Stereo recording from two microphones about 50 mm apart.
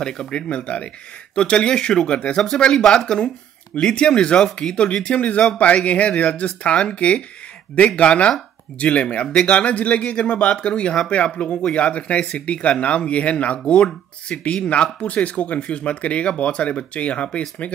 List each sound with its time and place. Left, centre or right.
0.0 s speech: centre